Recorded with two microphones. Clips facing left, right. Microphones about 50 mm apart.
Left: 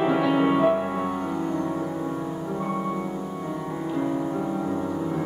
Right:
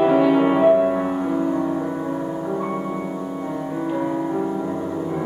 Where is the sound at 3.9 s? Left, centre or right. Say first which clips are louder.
Right 2 dB; right.